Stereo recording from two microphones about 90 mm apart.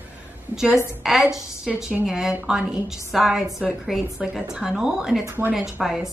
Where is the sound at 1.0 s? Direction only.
5° right (ahead or behind).